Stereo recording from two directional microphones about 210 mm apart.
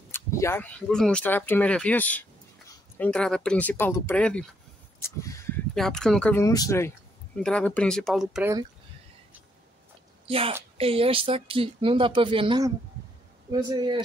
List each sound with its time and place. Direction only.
0.1 s speech: 15° left (ahead or behind)
5.8 s speech: centre (ahead or behind)
6.4 s speech: 15° left (ahead or behind); by 8.5 s centre (ahead or behind)
10.2 s a woman's voice: 25° right (ahead or behind)